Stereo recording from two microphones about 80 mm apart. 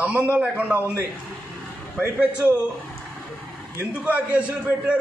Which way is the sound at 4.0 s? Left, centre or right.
Centre.